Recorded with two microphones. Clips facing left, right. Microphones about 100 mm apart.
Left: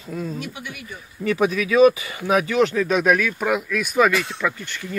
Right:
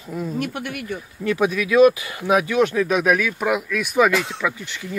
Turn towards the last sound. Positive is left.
turn(degrees=-5)  # may be behind; listen again after turning